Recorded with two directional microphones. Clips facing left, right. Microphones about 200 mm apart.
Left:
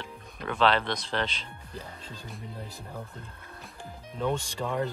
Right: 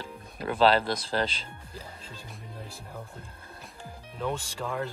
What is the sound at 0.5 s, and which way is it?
Speech, 35° right (ahead or behind).